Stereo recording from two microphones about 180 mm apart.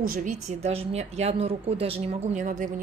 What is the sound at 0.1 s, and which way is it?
A woman's voice, 45° right (ahead or behind).